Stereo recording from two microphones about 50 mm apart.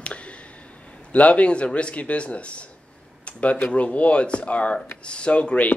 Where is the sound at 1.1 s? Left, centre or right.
Left.